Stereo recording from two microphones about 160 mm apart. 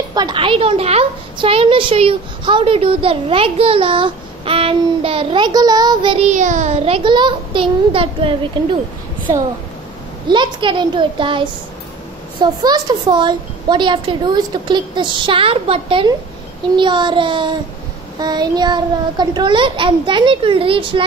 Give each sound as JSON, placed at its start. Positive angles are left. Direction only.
{"t": 0.1, "sound": "a woman's voice", "side_deg": -25}
{"t": 6.1, "sound": "a woman's voice", "side_deg": -50}
{"t": 10.2, "sound": "a woman's voice", "side_deg": -30}